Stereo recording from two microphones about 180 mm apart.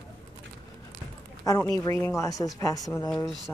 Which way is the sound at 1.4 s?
20° left (ahead or behind).